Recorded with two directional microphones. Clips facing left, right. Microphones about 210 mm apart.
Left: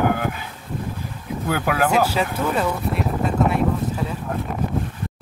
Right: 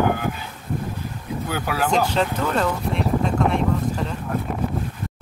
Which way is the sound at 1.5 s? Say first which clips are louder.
Left 4 dB; 50° left (ahead or behind).